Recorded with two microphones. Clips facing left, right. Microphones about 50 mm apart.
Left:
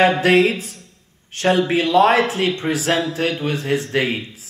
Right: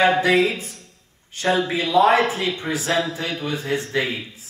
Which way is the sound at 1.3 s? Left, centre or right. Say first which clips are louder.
Left 4 dB; left.